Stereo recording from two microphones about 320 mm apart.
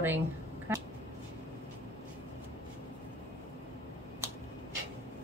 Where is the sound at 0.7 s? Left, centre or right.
Centre.